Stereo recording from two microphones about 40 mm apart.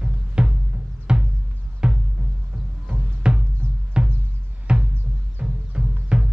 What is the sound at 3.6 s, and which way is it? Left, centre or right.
Music, right.